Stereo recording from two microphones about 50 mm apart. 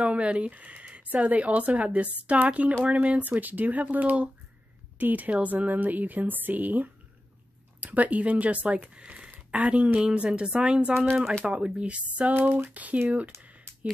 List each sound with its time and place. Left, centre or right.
0.0 s a woman's voice: right